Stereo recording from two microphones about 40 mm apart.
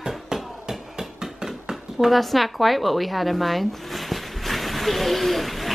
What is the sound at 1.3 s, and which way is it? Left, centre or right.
Dog, centre.